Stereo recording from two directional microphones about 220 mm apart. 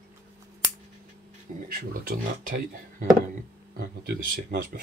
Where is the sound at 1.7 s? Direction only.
40° right (ahead or behind).